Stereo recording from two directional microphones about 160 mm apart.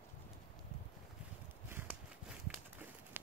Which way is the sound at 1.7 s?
10° right (ahead or behind).